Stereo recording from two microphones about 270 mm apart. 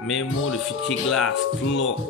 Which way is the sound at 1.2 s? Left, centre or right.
Left.